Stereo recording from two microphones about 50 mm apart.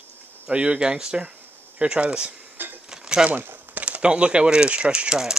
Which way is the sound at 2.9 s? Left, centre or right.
Centre.